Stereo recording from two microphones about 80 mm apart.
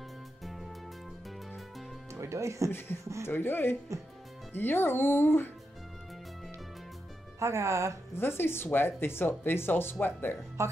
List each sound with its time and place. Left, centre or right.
0.4 s music: centre
2.1 s speech: right
3.3 s speech: left
7.3 s speech: right
8.2 s speech: left
10.6 s speech: right